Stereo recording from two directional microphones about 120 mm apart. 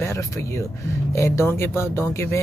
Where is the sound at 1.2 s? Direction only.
25° left (ahead or behind).